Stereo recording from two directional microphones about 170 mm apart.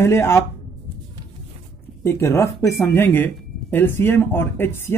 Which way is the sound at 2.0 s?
15° left (ahead or behind).